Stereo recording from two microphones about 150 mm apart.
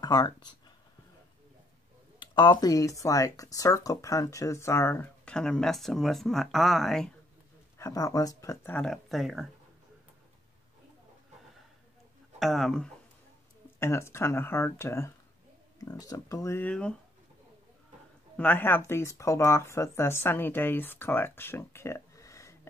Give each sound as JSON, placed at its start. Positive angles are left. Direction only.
{"t": 0.0, "sound": "speech", "side_deg": 25}
{"t": 2.1, "sound": "speech", "side_deg": 30}
{"t": 5.3, "sound": "speech", "side_deg": 5}
{"t": 7.8, "sound": "speech", "side_deg": 20}
{"t": 8.8, "sound": "speech", "side_deg": 0}
{"t": 12.4, "sound": "speech", "side_deg": 0}
{"t": 13.7, "sound": "speech", "side_deg": 15}
{"t": 18.3, "sound": "speech", "side_deg": 10}